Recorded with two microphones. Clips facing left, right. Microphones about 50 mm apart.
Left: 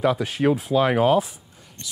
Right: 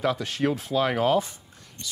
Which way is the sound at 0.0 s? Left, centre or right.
Centre.